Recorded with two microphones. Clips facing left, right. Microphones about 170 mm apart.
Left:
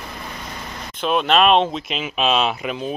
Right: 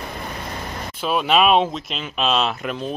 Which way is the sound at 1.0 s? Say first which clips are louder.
Left 1 dB; 5° right (ahead or behind).